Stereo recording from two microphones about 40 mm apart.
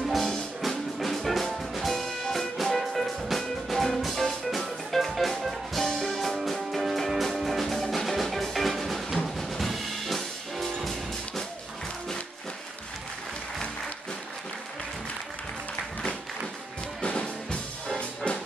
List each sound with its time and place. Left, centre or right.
0.1 s music: centre
5.9 s music: centre
17.0 s music: left